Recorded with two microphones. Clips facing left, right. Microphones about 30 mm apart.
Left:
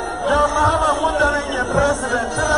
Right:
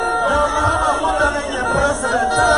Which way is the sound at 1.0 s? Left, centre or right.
Right.